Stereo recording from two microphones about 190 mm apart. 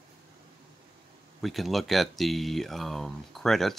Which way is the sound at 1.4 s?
Centre (ahead or behind).